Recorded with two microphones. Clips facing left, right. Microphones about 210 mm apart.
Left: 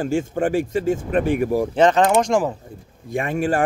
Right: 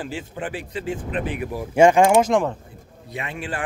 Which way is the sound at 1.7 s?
10° right (ahead or behind).